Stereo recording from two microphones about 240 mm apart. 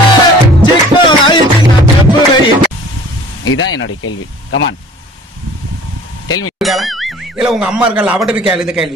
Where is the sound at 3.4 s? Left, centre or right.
Left.